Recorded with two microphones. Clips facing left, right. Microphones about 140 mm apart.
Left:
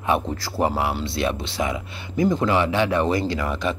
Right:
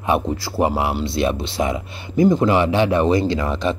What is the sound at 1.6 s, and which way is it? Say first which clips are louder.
Speech: right 3 dB; 30° right (ahead or behind).